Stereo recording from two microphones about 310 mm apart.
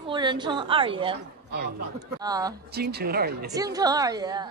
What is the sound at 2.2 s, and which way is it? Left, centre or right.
Speech, centre.